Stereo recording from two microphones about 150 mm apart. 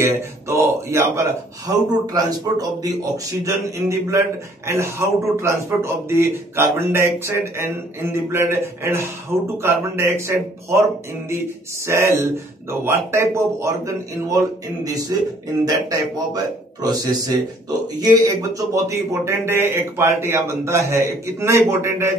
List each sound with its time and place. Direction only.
0.0 s speech: 20° right (ahead or behind)
2.2 s a man's voice: 25° right (ahead or behind)
11.8 s a man's voice: 20° right (ahead or behind)
15.6 s a man's voice: 25° right (ahead or behind)